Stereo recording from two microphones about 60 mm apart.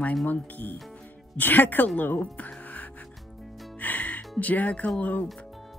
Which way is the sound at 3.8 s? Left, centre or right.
Left.